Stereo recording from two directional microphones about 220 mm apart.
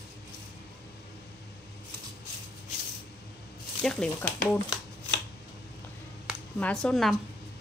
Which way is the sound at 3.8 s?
5° left (ahead or behind).